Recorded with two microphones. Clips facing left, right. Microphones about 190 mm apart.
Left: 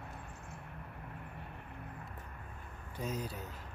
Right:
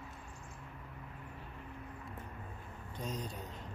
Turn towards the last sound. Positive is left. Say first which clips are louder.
# left 2 dB
turn(degrees=5)  # may be behind; listen again after turning